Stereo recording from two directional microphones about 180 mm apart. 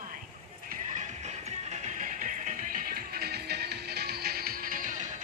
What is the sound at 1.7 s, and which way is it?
Music, 45° right (ahead or behind).